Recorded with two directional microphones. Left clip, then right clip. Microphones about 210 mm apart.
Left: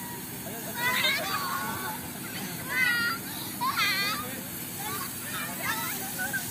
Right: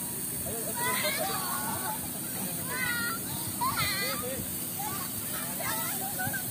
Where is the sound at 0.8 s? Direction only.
55° right (ahead or behind).